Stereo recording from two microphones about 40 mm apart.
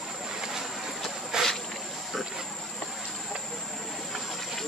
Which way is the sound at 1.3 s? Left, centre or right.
Centre.